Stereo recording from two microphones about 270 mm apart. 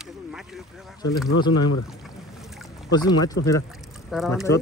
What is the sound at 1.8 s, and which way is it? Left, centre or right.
Boat, centre.